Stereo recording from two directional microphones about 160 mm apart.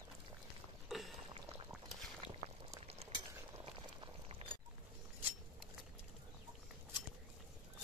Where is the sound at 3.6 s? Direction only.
35° right (ahead or behind).